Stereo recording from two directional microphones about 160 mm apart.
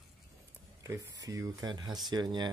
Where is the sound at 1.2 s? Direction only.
20° right (ahead or behind).